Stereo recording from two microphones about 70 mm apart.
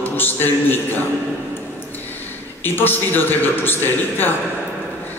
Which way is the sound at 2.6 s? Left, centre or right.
Left.